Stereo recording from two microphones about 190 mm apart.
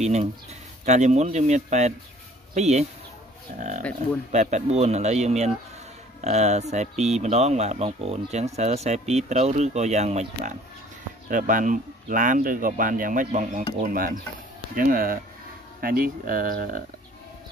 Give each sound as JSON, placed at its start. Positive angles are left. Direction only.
{"t": 0.0, "sound": "speech", "side_deg": -35}